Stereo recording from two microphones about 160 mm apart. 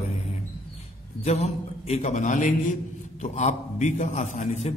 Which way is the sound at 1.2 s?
45° left (ahead or behind).